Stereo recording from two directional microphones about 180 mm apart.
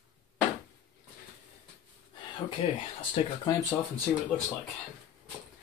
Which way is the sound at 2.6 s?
30° left (ahead or behind).